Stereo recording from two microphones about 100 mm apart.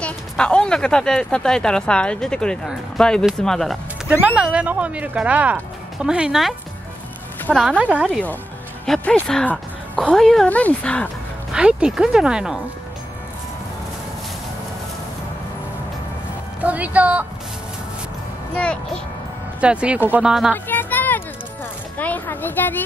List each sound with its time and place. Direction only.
0.0 s speech: 10° left (ahead or behind)
4.2 s speech: 15° right (ahead or behind)
7.7 s speech: 15° right (ahead or behind)
8.8 s speech: 5° left (ahead or behind)
11.5 s speech: 10° right (ahead or behind)
16.6 s speech: 15° right (ahead or behind)
18.5 s a child's voice: 10° left (ahead or behind)
19.6 s speech: 10° right (ahead or behind)
20.5 s a sound: 20° left (ahead or behind)
21.9 s a child's voice: 15° left (ahead or behind)